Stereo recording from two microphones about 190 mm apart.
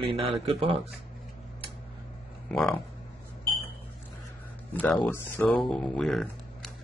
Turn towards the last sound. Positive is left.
turn(degrees=0)  # may be behind; listen again after turning